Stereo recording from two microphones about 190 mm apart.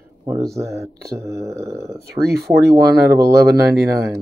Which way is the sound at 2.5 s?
60° right (ahead or behind).